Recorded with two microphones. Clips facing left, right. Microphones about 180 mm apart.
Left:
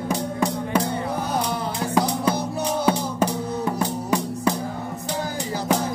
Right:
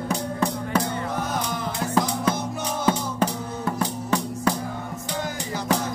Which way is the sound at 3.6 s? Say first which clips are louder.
Right 1 dB; 15° left (ahead or behind).